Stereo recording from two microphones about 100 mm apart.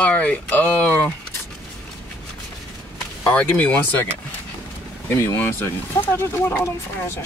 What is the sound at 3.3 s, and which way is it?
Speech, 15° left (ahead or behind).